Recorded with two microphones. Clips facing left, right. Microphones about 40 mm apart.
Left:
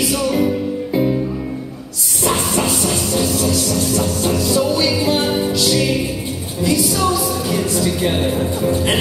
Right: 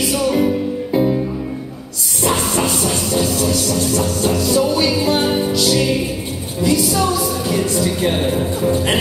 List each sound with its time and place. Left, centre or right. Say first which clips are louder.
0.0 s music: right 1 dB; centre
2.2 s a sound: even; centre
2.6 s music: even; centre